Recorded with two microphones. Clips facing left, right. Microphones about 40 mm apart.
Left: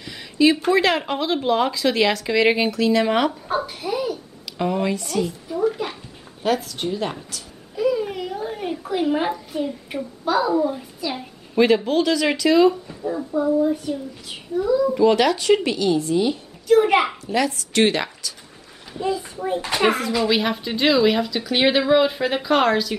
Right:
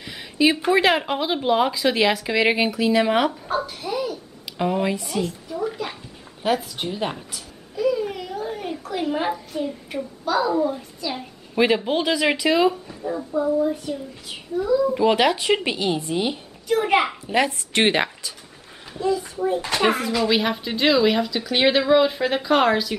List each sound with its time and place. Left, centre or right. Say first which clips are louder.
0.0 s speech: left 2 dB; centre
4.5 s speech: even; centre
5.5 s a sound: left 5 dB; centre
6.4 s speech: left 1 dB; centre
7.7 s a sound: left 1 dB; centre
10.8 s a child's voice: left 1 dB; centre
11.5 s speech: left 3 dB; centre
12.8 s speech: left 2 dB; centre
15.0 s speech: left 2 dB; centre
16.6 s a child's voice: left 4 dB; centre
17.3 s speech: right 1 dB; right
19.6 s speech: left 4 dB; centre